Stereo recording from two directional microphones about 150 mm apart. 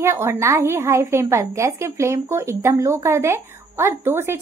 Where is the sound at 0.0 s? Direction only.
20° right (ahead or behind).